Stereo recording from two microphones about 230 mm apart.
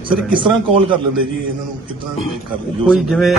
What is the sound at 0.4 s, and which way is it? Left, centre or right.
Speech, right.